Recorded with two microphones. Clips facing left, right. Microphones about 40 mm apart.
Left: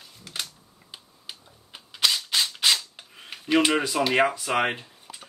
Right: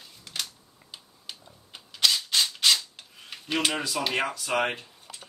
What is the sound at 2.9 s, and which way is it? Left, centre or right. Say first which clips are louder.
Filing: left 2 dB; left.